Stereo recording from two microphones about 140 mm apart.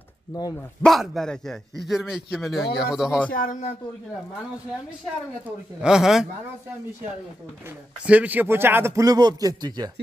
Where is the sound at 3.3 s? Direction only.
85° left.